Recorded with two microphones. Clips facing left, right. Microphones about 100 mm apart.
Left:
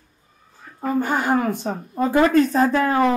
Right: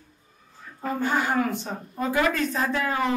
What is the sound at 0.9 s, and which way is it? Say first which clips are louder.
A woman's voice: left 4 dB; 45° left (ahead or behind).